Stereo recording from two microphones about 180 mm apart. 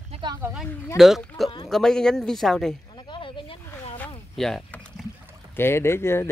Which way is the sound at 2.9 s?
25° left (ahead or behind).